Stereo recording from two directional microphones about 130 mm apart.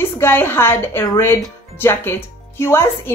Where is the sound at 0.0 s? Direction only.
20° left (ahead or behind).